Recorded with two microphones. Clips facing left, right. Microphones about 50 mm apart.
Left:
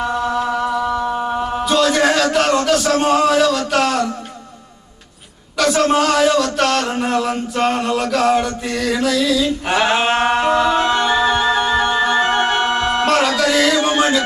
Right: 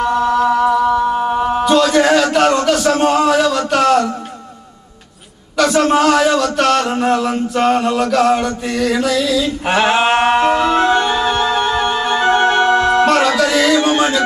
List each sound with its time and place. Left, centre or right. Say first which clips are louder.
0.0 s a sound: right 5 dB; centre
2.3 s mantra: right 2 dB; centre
5.6 s speech: right 2 dB; centre
6.8 s mantra: right 3 dB; centre
11.1 s music: even; centre
12.4 s music: right 4 dB; right
13.0 s music: right 3 dB; centre
13.4 s a sound: right 2 dB; centre